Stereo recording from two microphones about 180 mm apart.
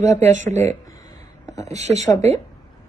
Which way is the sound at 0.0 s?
40° right (ahead or behind).